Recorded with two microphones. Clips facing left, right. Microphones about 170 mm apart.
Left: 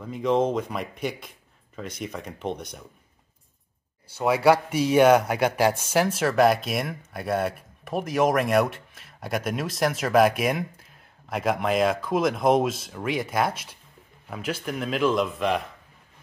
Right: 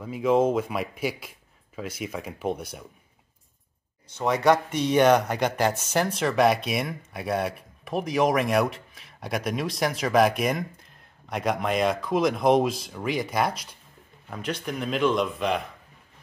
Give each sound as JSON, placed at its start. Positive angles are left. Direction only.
{"t": 0.0, "sound": "speech", "side_deg": -5}
{"t": 4.2, "sound": "speech", "side_deg": 5}